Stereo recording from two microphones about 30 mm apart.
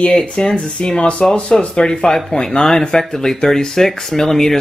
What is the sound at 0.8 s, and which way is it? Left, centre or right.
Speech, left.